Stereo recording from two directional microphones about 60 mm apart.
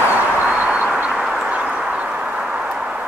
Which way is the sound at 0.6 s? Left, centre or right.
Right.